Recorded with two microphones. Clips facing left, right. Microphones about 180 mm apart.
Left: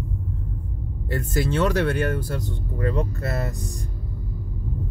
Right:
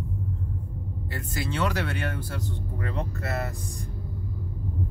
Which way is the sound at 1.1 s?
45° left (ahead or behind).